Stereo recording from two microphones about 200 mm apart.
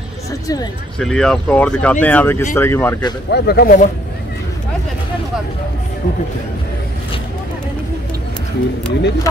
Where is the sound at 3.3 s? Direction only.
55° left (ahead or behind).